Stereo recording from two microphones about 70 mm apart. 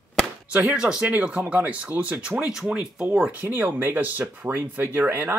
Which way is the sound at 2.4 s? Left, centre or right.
Centre.